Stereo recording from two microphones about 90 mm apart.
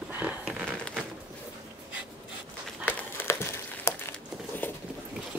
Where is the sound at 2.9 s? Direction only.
20° left (ahead or behind).